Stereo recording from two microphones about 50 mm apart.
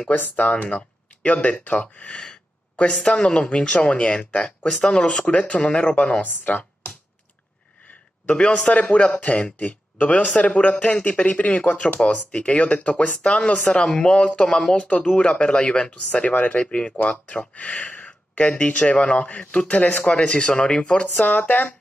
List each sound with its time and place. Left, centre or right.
0.1 s speech: left
4.5 s speech: centre
6.2 s speech: left
8.3 s speech: left
21.3 s speech: left